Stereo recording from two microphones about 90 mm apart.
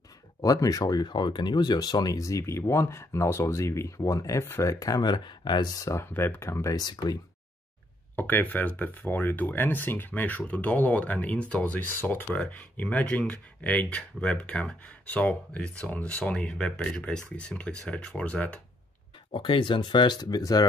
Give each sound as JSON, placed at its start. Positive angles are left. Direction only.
{"t": 0.4, "sound": "speech", "side_deg": 40}
{"t": 5.8, "sound": "speech", "side_deg": 35}
{"t": 6.7, "sound": "speech", "side_deg": 45}
{"t": 8.2, "sound": "speech", "side_deg": 20}
{"t": 19.3, "sound": "speech", "side_deg": 70}